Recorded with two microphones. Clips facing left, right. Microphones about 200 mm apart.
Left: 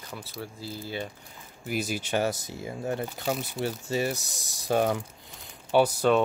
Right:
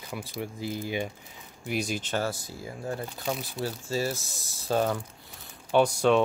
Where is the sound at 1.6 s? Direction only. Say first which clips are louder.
Even; centre (ahead or behind).